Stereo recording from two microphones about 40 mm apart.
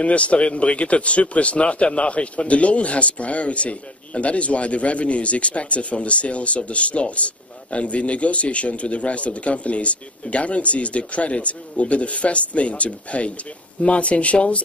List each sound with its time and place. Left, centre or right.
0.0 s speech: left